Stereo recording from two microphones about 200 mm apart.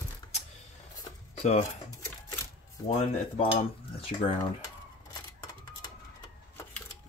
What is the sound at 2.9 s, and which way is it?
Cutlery, 30° left (ahead or behind).